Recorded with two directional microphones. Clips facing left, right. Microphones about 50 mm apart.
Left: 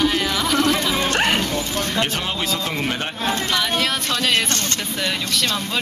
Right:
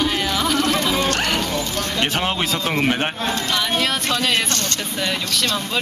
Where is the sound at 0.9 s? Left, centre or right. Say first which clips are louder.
Left 1 dB; left.